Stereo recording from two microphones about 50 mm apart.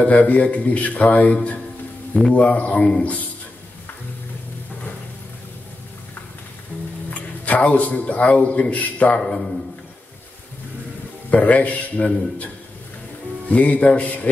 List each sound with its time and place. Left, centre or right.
0.0 s speech: left
7.2 s a man's voice: left
9.2 s a man's voice: centre
11.2 s speech: left
13.5 s speech: left